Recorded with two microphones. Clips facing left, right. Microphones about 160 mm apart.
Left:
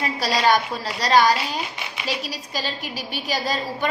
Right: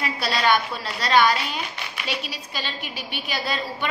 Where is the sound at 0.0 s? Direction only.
35° left (ahead or behind).